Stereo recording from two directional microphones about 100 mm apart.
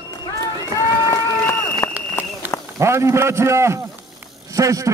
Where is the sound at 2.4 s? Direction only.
20° right (ahead or behind).